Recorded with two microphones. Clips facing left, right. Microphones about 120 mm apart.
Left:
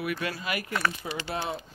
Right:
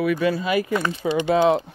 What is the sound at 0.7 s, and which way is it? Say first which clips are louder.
Speech: right 8 dB; 20° right (ahead or behind).